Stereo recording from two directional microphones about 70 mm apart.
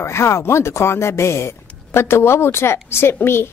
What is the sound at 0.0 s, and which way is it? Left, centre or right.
A woman's voice, left.